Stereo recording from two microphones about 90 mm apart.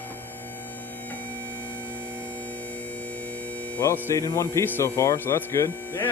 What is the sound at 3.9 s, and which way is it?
Speech, 30° left (ahead or behind).